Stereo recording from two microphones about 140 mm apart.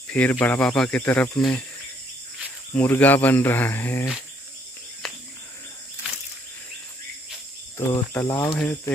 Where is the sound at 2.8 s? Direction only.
10° left (ahead or behind).